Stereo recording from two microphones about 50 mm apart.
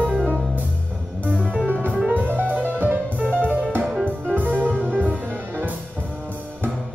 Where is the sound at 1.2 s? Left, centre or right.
Right.